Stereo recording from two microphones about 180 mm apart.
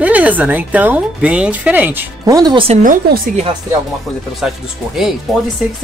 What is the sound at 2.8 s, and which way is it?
Speech, 50° right (ahead or behind).